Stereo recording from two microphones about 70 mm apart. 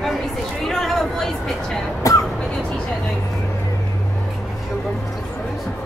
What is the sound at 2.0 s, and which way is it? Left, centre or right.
Vehicle, left.